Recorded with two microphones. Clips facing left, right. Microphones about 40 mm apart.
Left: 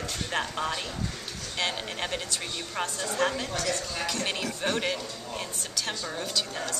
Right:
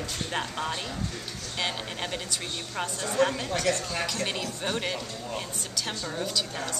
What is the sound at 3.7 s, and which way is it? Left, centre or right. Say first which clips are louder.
Speech: right 5 dB; right.